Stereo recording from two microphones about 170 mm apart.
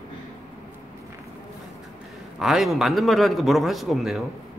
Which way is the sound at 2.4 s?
Centre (ahead or behind).